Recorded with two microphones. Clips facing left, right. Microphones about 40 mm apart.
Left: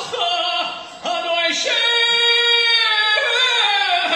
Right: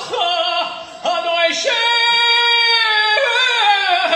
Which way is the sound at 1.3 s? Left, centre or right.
Right.